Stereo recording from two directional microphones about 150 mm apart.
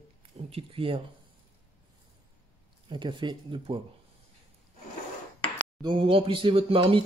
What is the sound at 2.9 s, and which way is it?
Speech, 30° right (ahead or behind).